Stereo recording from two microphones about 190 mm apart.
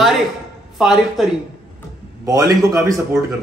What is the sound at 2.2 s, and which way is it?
Speech, 20° right (ahead or behind).